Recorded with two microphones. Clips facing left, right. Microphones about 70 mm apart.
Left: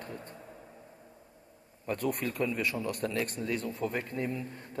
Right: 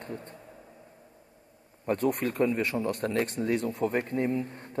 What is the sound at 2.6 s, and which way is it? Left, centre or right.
A man's voice, right.